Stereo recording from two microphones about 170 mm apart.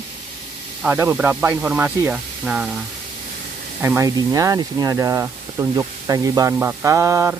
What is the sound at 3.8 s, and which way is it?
Speech, 15° right (ahead or behind).